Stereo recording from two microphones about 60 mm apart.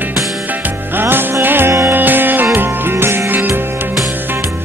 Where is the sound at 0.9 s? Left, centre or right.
Right.